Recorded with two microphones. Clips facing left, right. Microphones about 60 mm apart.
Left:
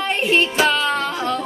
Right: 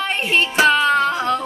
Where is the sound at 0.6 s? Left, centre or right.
Centre.